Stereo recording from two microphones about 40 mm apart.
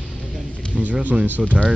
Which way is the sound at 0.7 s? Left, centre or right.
Right.